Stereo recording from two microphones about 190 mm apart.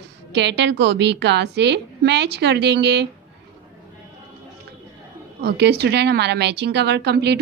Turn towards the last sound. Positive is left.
turn(degrees=-60)  # may be behind; listen again after turning